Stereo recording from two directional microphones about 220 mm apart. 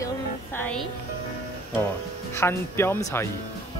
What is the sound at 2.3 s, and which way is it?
Speech, 10° left (ahead or behind).